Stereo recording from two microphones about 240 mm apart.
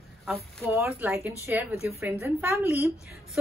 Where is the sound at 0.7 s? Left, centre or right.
Centre.